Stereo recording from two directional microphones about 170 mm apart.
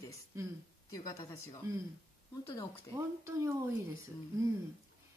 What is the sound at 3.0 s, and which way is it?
Speech, 15° right (ahead or behind).